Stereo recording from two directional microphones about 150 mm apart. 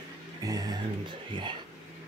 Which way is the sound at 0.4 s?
25° right (ahead or behind).